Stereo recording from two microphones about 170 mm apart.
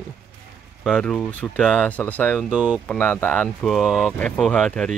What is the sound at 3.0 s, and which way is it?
Speech, 10° left (ahead or behind).